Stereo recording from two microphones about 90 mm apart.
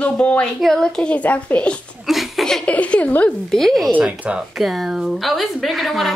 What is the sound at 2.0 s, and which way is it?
Chuckle, centre (ahead or behind).